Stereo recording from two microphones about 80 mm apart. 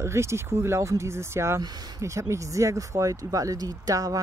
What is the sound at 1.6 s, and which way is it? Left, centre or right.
Speech, right.